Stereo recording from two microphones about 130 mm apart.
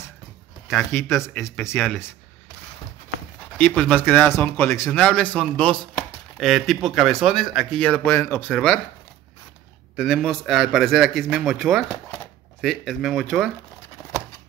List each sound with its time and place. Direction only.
1.0 s a man's voice: 5° right (ahead or behind)
1.7 s speech: 15° left (ahead or behind)
3.5 s a man's voice: 15° left (ahead or behind)
8.0 s speech: 20° left (ahead or behind)
9.9 s a man's voice: 5° left (ahead or behind)